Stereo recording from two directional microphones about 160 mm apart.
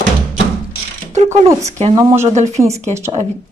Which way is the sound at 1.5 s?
20° right (ahead or behind).